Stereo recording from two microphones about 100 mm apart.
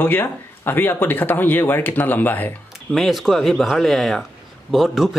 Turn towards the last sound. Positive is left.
turn(degrees=0)  # may be behind; listen again after turning